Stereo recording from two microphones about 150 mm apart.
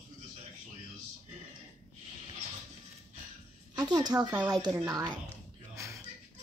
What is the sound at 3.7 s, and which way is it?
A woman's voice, 25° right (ahead or behind).